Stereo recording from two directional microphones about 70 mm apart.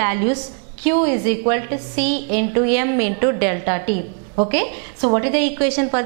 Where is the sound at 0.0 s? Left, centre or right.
Centre.